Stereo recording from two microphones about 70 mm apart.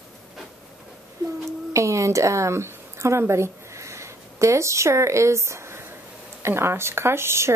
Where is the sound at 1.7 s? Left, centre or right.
Right.